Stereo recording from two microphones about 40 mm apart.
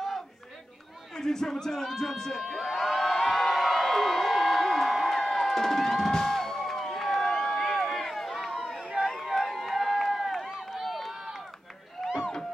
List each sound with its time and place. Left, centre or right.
1.1 s a man's voice: centre
2.4 s crowd: centre
5.2 s music: centre
7.5 s run: centre